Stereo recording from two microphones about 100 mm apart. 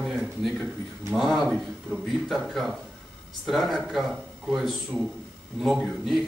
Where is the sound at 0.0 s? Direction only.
Centre (ahead or behind).